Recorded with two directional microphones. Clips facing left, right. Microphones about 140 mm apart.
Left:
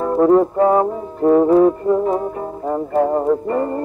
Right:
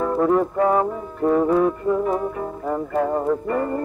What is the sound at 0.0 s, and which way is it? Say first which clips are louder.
Brass instrument: left 5 dB; 30° left (ahead or behind).